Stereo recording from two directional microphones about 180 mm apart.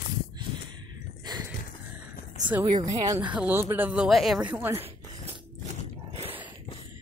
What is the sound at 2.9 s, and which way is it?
Speech, 20° right (ahead or behind).